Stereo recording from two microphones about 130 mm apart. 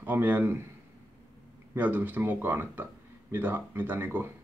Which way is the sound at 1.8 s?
15° right (ahead or behind).